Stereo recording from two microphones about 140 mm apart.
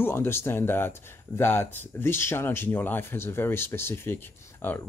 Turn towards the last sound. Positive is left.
turn(degrees=15)  # may be behind; listen again after turning